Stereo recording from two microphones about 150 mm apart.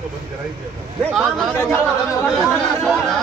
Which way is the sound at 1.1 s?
Centre (ahead or behind).